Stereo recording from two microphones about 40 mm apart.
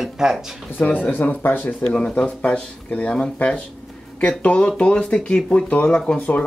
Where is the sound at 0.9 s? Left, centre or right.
Left.